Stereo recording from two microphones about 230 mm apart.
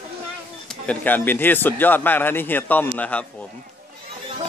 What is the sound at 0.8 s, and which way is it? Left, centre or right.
A man's voice, centre.